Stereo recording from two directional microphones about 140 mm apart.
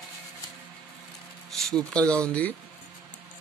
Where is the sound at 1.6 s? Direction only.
5° left (ahead or behind).